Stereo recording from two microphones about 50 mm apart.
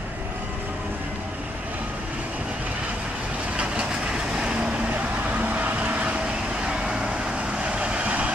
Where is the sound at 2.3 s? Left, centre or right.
Right.